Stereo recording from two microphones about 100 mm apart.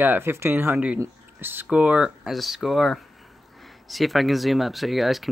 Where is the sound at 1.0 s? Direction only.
20° right (ahead or behind).